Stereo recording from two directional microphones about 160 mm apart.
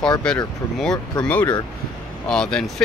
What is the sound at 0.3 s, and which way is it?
Speech, 5° left (ahead or behind).